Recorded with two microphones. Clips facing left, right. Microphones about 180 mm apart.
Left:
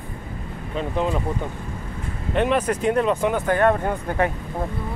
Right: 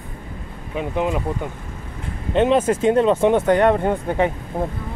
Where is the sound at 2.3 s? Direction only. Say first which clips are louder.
Right 4 dB; 25° right (ahead or behind).